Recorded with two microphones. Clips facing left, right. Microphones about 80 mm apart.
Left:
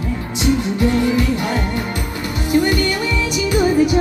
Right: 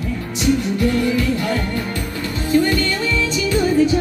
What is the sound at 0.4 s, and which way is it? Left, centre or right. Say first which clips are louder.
Music: even; left.